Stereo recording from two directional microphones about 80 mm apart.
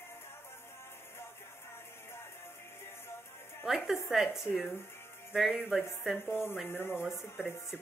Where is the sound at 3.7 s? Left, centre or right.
Centre.